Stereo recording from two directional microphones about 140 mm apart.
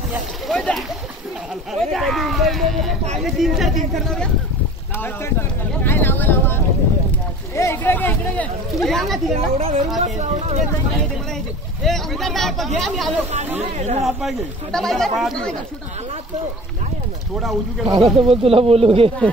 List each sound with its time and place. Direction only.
0.5 s speech: 5° left (ahead or behind)
4.9 s speech: 15° left (ahead or behind)
5.8 s boat: 15° left (ahead or behind)
7.5 s speech: 15° left (ahead or behind)
8.7 s speech: centre (ahead or behind)
9.6 s speech: 45° right (ahead or behind)
10.0 s speech: 55° right (ahead or behind)
11.8 s speech: centre (ahead or behind)
13.6 s speech: 50° right (ahead or behind)
14.0 s speech: centre (ahead or behind)
17.4 s speech: centre (ahead or behind)
18.0 s speech: 45° right (ahead or behind)